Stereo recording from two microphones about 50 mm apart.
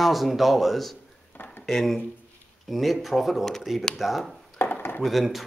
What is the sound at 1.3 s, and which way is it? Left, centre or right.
Dishes, left.